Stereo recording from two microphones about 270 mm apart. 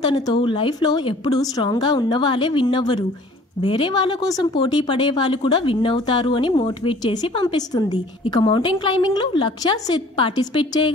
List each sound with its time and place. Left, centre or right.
0.0 s speech: centre